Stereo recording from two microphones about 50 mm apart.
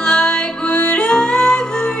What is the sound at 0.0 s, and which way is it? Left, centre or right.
Music, centre.